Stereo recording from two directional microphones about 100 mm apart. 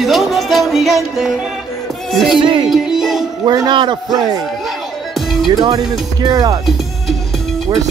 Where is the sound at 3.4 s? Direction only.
40° right (ahead or behind).